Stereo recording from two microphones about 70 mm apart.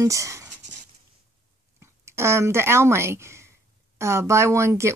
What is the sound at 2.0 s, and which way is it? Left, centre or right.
Speech, right.